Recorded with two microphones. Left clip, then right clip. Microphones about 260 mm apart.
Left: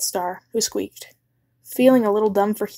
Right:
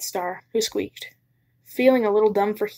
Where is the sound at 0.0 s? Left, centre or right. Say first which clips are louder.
Left 3 dB; left.